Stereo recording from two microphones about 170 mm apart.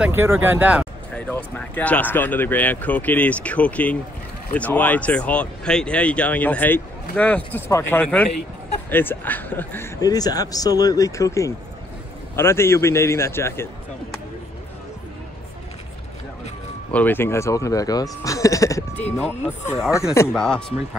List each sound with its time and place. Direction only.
0.0 s speech: 15° right (ahead or behind)
1.1 s speech: 5° left (ahead or behind)
16.9 s speech: 10° left (ahead or behind)